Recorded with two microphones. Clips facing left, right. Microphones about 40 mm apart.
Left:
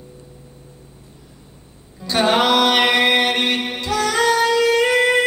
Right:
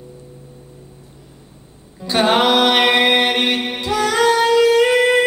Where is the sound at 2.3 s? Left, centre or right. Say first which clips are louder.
Right 1 dB; centre.